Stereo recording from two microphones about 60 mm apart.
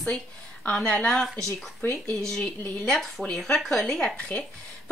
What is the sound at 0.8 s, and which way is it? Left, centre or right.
Speech, centre.